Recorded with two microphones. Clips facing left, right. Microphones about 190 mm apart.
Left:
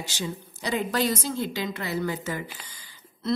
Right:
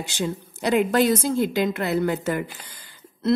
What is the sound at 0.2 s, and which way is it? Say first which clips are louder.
A woman's voice: right 7 dB; 55° right (ahead or behind).